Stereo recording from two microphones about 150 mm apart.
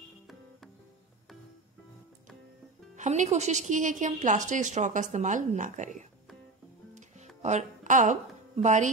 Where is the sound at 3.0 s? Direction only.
50° right (ahead or behind).